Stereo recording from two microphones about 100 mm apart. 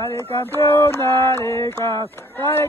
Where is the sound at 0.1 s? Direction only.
25° left (ahead or behind).